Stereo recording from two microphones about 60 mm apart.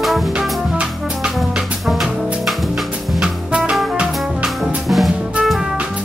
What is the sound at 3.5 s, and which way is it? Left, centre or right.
Music, centre.